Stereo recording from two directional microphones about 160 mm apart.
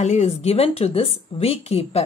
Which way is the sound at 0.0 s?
45° left (ahead or behind).